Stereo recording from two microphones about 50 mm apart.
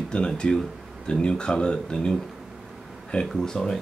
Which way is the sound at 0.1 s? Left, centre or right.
Left.